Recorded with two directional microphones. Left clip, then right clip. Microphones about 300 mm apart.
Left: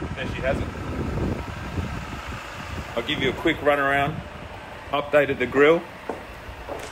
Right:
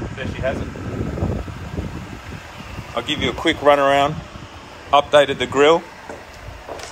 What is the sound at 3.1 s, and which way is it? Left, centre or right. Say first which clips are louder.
Speech: right 3 dB; right.